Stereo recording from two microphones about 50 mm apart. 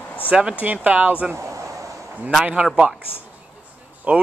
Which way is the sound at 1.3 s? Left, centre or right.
Right.